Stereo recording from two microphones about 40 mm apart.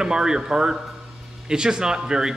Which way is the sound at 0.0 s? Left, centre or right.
Centre.